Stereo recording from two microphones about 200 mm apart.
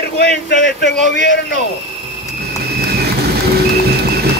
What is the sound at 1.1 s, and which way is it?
Speech, 60° left (ahead or behind).